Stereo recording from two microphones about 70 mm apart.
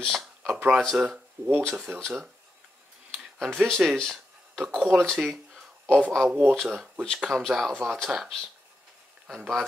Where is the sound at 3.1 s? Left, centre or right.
Centre.